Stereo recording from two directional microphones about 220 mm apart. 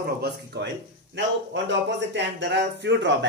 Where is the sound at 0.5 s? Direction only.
50° right (ahead or behind).